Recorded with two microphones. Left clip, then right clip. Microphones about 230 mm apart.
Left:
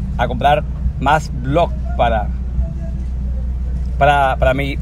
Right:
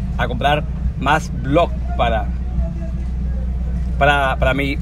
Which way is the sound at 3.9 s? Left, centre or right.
Centre.